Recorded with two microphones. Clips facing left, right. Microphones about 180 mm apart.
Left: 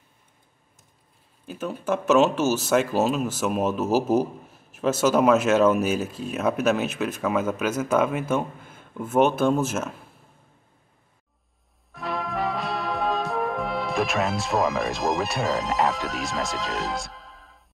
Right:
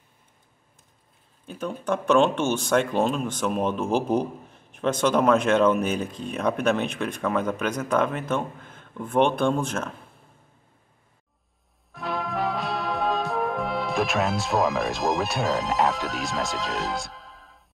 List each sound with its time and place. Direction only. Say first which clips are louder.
1.4 s speech: left 1 dB; 5° left (ahead or behind)
11.9 s brass instrument: even; centre (ahead or behind)